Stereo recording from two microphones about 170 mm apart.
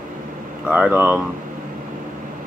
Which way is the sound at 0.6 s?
10° right (ahead or behind).